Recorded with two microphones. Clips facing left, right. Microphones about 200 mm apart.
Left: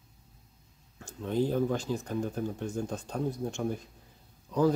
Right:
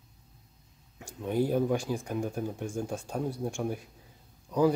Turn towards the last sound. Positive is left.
turn(degrees=-10)  # may be behind; listen again after turning